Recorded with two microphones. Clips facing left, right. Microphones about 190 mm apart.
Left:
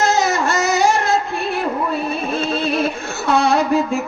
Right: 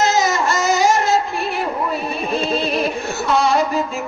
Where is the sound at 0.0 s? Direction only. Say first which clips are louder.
Even; 55° left (ahead or behind).